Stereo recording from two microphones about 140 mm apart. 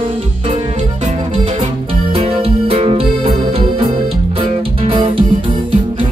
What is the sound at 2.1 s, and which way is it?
Music, 40° right (ahead or behind).